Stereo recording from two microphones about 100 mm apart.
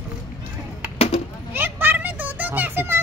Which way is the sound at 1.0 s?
90° left.